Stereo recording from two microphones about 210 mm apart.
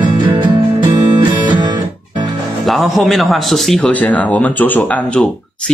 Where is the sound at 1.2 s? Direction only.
20° right (ahead or behind).